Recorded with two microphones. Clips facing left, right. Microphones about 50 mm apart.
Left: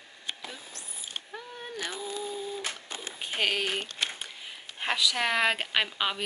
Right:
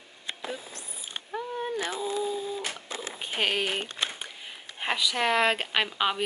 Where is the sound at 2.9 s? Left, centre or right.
Centre.